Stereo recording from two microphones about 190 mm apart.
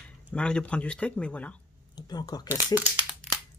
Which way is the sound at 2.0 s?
20° left (ahead or behind).